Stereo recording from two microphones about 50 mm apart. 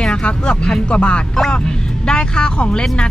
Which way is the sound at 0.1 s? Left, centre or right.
Centre.